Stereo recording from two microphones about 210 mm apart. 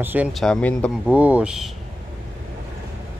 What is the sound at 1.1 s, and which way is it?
Speech, 5° right (ahead or behind).